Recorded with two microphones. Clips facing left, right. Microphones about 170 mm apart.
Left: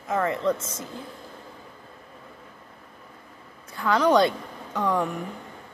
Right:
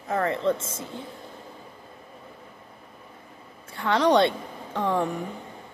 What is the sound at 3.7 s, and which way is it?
A woman's voice, 30° right (ahead or behind).